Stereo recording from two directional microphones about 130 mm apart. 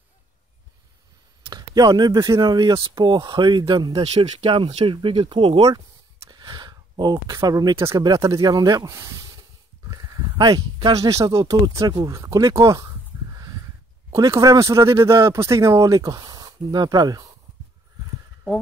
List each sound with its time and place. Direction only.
1.5 s speech: 30° right (ahead or behind)
4.0 s speech: 50° right (ahead or behind); by 12.9 s 25° right (ahead or behind)
14.1 s speech: 25° right (ahead or behind)